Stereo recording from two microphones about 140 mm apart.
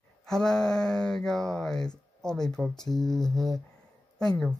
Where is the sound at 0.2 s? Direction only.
5° left (ahead or behind).